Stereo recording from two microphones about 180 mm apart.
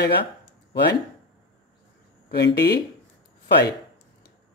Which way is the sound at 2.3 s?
70° left (ahead or behind).